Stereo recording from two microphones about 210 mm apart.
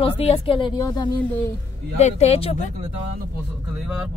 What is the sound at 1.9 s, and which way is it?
Speech, 30° left (ahead or behind).